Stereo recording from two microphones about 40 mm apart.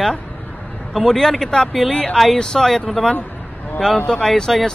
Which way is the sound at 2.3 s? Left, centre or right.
Centre.